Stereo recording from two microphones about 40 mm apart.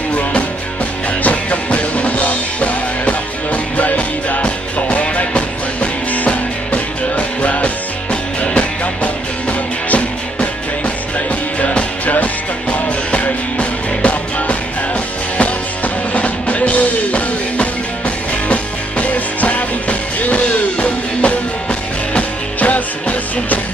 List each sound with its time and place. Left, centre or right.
0.1 s music: left
22.6 s music: left